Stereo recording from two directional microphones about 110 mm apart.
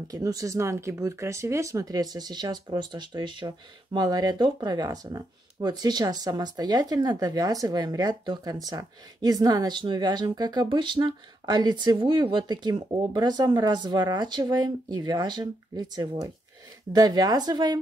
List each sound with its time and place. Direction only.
0.1 s speech: 30° right (ahead or behind)